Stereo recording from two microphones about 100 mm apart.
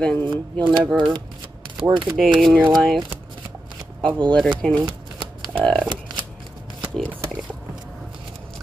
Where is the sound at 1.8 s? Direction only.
55° right (ahead or behind).